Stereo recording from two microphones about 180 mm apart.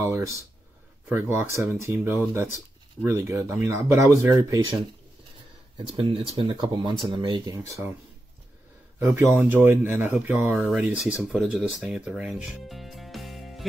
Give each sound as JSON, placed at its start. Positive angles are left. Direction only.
{"t": 1.0, "sound": "speech", "side_deg": -10}
{"t": 5.9, "sound": "speech", "side_deg": -30}
{"t": 9.0, "sound": "speech", "side_deg": -15}